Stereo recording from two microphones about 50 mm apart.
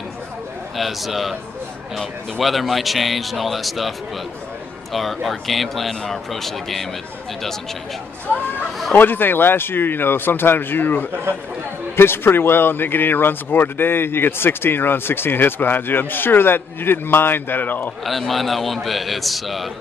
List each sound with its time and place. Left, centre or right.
0.7 s speech: centre
4.9 s speech: centre
8.9 s speech: left
18.0 s speech: centre